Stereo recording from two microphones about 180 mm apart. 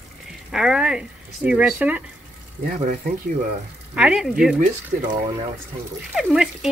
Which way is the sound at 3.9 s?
5° right (ahead or behind).